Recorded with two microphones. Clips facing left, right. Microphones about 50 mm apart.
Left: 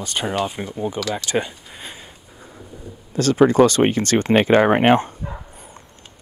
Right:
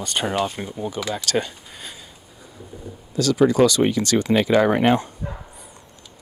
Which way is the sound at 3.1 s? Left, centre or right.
Left.